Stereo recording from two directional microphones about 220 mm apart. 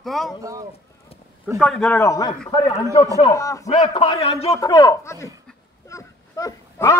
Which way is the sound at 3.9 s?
25° left (ahead or behind).